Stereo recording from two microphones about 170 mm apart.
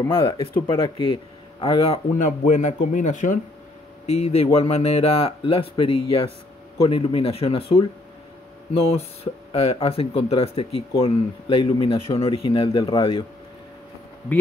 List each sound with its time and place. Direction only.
0.1 s a man's voice: 30° left (ahead or behind)
2.1 s speech: 45° left (ahead or behind)
4.0 s speech: 35° left (ahead or behind)
8.8 s speech: 35° left (ahead or behind)